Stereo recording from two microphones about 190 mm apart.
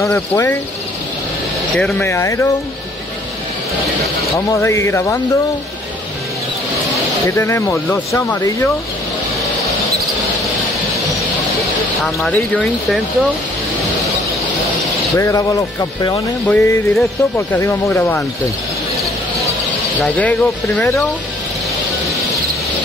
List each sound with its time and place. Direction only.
0.0 s speech: 10° left (ahead or behind)
1.8 s speech: 5° left (ahead or behind)
4.5 s speech: 15° left (ahead or behind)
7.2 s speech: 15° left (ahead or behind)
12.0 s speech: 5° left (ahead or behind)
15.1 s speech: 15° left (ahead or behind)
16.4 s speech: 10° left (ahead or behind)
20.0 s speech: 5° left (ahead or behind)